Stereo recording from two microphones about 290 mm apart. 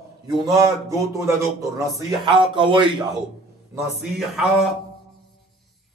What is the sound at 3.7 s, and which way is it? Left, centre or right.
Speech, centre.